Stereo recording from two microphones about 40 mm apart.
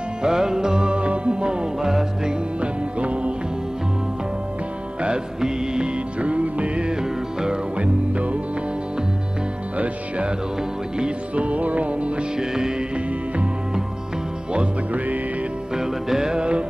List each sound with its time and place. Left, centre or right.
0.2 s music: centre
1.8 s music: centre
2.6 s music: right
5.0 s music: centre
6.1 s music: right; by 7.5 s centre
7.7 s music: right
9.8 s music: right
12.4 s music: centre
15.7 s music: centre